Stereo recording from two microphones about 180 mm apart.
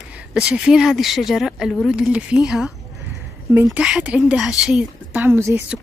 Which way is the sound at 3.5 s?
5° right (ahead or behind).